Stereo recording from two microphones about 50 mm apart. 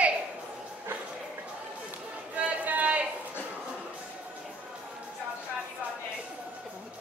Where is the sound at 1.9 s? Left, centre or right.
Right.